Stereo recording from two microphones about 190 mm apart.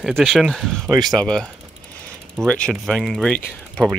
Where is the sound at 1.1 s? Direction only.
5° left (ahead or behind).